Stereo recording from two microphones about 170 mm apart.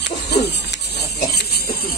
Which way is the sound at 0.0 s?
80° left.